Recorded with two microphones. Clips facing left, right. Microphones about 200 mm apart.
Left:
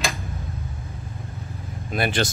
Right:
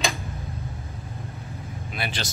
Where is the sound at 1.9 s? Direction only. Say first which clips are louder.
Left 9 dB; 50° left (ahead or behind).